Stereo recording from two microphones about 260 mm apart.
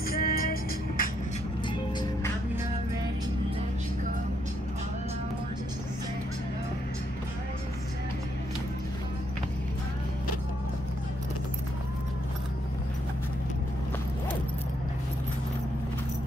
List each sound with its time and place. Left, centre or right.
0.1 s music: left